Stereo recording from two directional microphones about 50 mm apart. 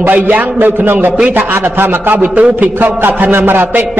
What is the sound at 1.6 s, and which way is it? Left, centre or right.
Speech, right.